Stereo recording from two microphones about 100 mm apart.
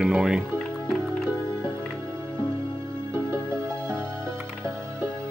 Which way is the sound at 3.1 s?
55° left (ahead or behind).